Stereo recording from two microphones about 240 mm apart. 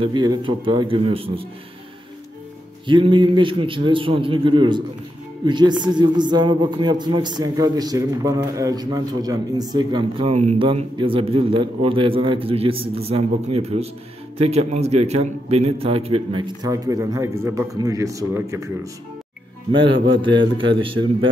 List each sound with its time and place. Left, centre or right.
0.0 s a man's voice: centre
2.9 s a man's voice: centre
20.5 s a man's voice: right